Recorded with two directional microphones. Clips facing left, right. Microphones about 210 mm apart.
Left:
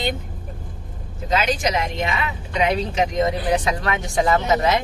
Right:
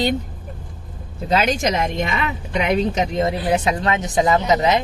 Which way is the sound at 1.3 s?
45° right (ahead or behind).